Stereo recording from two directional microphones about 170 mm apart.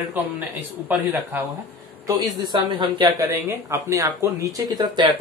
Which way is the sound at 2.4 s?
25° right (ahead or behind).